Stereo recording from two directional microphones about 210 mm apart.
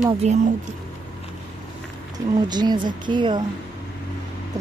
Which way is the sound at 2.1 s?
20° right (ahead or behind).